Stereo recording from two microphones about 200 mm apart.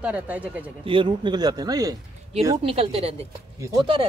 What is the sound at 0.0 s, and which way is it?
Speech, 5° right (ahead or behind).